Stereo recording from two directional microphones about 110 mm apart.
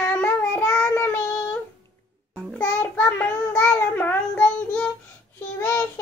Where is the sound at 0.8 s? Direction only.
25° left (ahead or behind).